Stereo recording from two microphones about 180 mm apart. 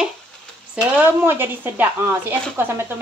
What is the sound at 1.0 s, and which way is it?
Speech, 10° right (ahead or behind).